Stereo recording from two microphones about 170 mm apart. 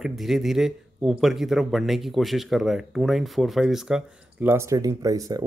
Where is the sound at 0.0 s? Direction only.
Centre (ahead or behind).